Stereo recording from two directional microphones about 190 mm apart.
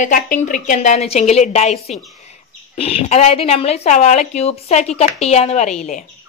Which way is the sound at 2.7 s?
30° left (ahead or behind).